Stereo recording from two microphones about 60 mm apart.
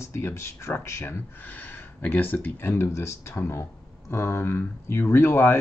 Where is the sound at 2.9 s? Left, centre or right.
Left.